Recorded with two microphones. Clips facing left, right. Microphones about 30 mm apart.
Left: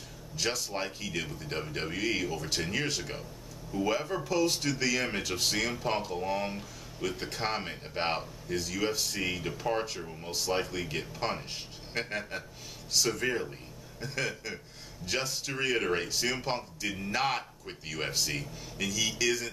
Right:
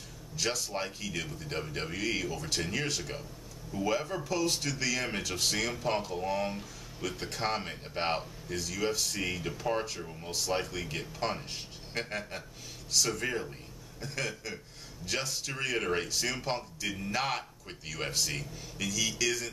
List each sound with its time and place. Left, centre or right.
0.4 s speech: centre